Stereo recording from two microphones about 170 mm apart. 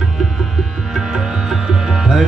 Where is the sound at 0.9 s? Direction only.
5° right (ahead or behind).